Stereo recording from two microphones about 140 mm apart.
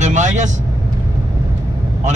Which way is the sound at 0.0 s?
60° right (ahead or behind).